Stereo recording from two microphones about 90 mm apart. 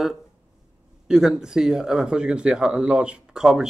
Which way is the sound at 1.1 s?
5° right (ahead or behind).